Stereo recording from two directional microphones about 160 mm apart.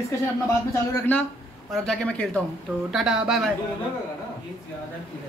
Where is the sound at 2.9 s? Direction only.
5° right (ahead or behind).